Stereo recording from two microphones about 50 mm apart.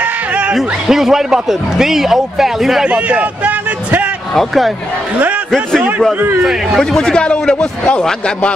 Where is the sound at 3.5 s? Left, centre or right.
Right.